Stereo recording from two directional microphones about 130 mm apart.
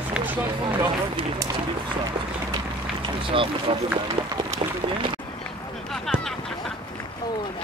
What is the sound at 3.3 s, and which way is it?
Speech, 40° right (ahead or behind).